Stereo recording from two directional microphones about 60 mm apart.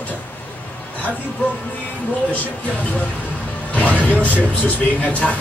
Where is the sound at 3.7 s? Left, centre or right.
Left.